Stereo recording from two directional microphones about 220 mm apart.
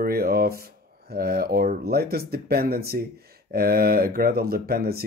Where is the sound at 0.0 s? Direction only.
45° right (ahead or behind).